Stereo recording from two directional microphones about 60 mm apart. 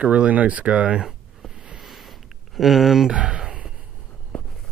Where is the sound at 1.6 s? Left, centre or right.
Centre.